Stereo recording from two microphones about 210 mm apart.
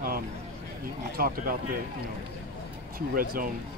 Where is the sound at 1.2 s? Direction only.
45° right (ahead or behind).